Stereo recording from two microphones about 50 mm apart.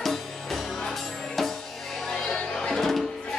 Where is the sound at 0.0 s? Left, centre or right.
Centre.